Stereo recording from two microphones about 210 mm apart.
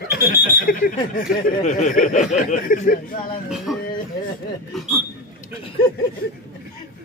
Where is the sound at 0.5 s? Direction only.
45° left (ahead or behind).